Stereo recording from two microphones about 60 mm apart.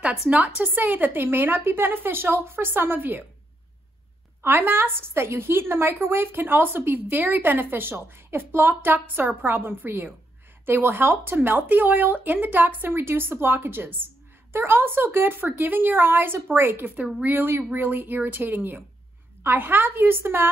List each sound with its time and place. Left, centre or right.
0.7 s a woman's voice: right
4.4 s a woman's voice: right